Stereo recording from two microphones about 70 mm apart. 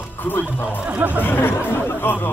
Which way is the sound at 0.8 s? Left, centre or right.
Right.